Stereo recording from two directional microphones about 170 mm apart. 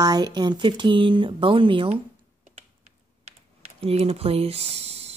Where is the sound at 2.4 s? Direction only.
40° right (ahead or behind).